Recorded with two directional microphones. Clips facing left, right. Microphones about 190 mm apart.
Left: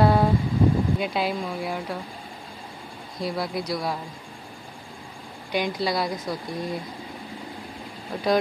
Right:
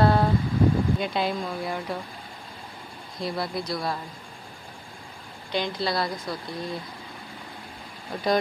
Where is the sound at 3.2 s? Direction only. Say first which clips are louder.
Left 1 dB; 10° left (ahead or behind).